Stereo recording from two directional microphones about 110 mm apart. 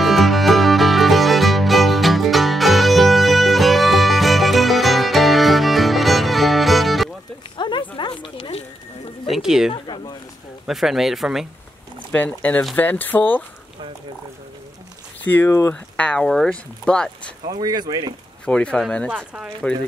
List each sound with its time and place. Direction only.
0.0 s music: centre (ahead or behind)
7.5 s a sound: 45° left (ahead or behind)
8.4 s a sound: 75° left (ahead or behind)
9.2 s a sound: centre (ahead or behind)
9.7 s a sound: 45° left (ahead or behind)
10.7 s speech: centre (ahead or behind)
12.1 s speech: 10° left (ahead or behind)
15.2 s speech: 20° left (ahead or behind)
15.7 s speech: 10° left (ahead or behind)
17.5 s speech: 35° right (ahead or behind)
18.4 s speech: 10° left (ahead or behind)
19.0 s speech: 10° right (ahead or behind)